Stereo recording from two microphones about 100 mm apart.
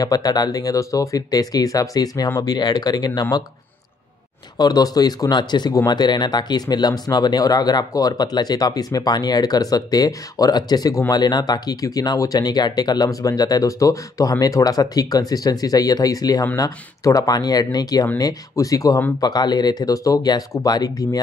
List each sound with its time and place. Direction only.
0.0 s speech: 40° left (ahead or behind)
4.6 s speech: 40° left (ahead or behind)